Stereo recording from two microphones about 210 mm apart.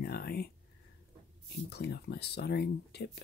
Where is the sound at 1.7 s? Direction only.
50° left (ahead or behind).